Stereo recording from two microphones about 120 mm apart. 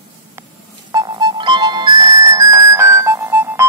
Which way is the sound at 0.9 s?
40° right (ahead or behind).